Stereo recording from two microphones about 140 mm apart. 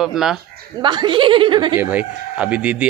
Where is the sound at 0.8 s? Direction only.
35° right (ahead or behind).